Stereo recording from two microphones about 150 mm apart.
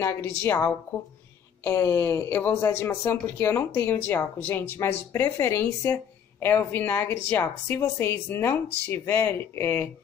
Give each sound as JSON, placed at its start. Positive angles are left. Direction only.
{"t": 0.0, "sound": "speech", "side_deg": 15}